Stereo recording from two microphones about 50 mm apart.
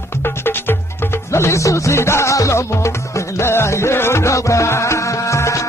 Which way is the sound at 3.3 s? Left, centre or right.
Left.